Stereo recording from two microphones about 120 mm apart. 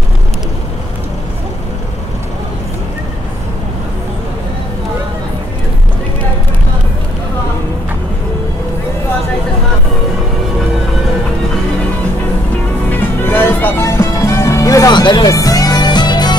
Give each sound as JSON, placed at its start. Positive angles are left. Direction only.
{"t": 12.9, "sound": "music", "side_deg": 20}